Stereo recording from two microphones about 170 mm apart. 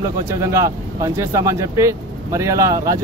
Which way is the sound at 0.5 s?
20° right (ahead or behind).